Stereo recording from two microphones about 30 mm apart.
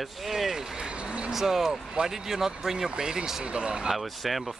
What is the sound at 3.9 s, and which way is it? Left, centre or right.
Speech, centre.